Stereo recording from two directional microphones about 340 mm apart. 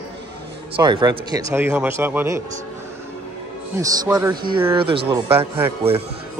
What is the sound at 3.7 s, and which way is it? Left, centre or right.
A man's voice, centre.